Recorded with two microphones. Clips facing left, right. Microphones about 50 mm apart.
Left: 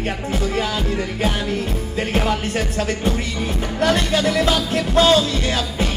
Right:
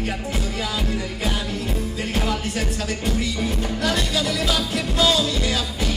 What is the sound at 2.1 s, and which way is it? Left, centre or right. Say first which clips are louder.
Music: left 5 dB; left.